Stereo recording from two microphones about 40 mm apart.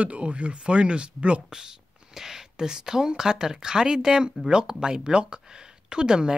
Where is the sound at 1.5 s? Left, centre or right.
Centre.